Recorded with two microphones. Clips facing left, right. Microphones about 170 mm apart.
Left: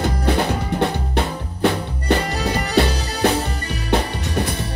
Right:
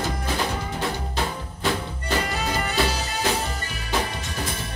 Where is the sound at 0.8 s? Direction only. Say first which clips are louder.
Left 6 dB; 65° left (ahead or behind).